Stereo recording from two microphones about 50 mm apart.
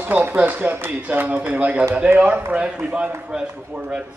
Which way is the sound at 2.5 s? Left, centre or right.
Right.